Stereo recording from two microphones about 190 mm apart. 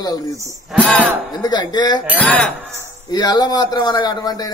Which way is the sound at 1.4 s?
20° left (ahead or behind).